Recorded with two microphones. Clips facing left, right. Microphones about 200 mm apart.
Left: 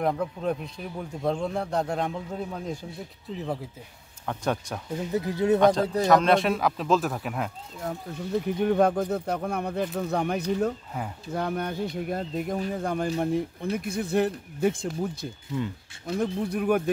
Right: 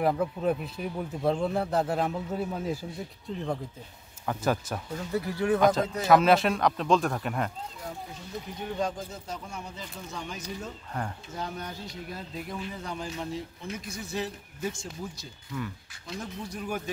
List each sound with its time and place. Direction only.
0.0 s a man's voice: 5° right (ahead or behind)
4.3 s a man's voice: 5° right (ahead or behind)
4.9 s speech: 20° left (ahead or behind)
6.0 s a man's voice: 5° right (ahead or behind)
7.8 s speech: 60° left (ahead or behind)
15.5 s speech: 25° left (ahead or behind)
16.4 s speech: 60° left (ahead or behind)